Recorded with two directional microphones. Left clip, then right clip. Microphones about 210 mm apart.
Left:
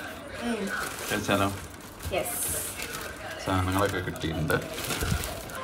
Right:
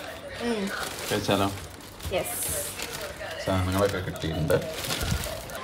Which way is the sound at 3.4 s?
15° right (ahead or behind).